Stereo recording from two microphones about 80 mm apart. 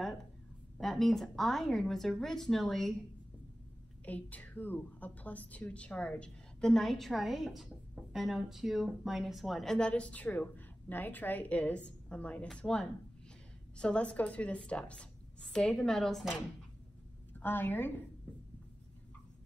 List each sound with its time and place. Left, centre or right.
0.7 s a woman's voice: centre
4.0 s a woman's voice: centre
17.3 s a woman's voice: left